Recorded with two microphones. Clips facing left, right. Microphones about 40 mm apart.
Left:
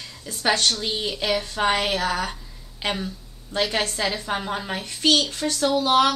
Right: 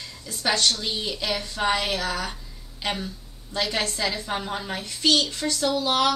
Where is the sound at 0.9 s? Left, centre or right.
Left.